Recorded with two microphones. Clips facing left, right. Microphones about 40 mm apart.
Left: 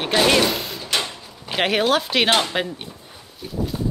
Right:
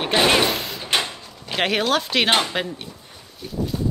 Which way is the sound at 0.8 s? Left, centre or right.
Right.